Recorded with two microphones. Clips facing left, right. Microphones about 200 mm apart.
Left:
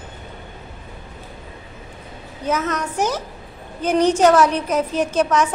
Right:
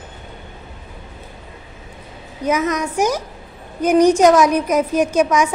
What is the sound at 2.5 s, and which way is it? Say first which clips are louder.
A woman's voice: right 3 dB; 10° right (ahead or behind).